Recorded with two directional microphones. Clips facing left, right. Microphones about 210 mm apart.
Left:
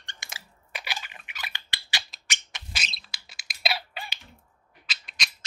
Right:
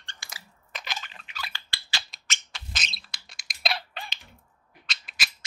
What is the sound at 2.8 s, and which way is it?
Bird, centre (ahead or behind).